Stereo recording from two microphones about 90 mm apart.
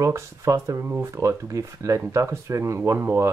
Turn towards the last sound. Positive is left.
turn(degrees=-30)  # may be behind; listen again after turning